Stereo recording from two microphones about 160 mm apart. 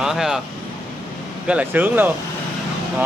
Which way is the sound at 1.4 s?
10° right (ahead or behind).